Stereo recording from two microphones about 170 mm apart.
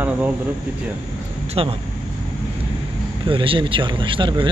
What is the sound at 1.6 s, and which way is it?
Speech, 30° right (ahead or behind).